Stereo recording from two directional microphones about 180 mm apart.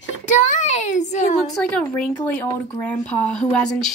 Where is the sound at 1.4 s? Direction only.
5° left (ahead or behind).